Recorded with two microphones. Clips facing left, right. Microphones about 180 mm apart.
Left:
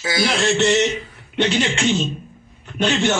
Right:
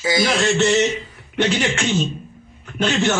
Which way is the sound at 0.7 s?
15° right (ahead or behind).